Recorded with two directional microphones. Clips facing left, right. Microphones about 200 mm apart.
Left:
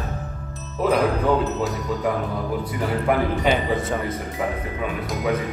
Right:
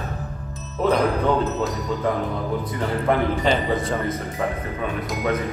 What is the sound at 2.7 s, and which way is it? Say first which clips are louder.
Speech: even; 10° left (ahead or behind).